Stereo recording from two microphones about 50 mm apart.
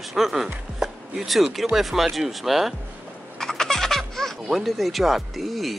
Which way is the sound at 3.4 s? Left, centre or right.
Centre.